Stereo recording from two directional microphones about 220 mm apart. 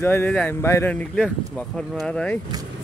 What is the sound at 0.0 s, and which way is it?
Speech, 10° left (ahead or behind).